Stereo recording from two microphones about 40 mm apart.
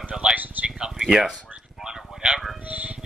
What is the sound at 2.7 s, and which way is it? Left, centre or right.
Music, right.